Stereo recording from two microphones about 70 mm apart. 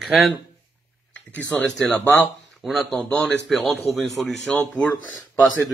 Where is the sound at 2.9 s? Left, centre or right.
Centre.